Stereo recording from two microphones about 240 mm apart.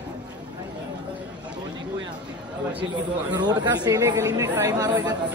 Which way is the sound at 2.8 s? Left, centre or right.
Centre.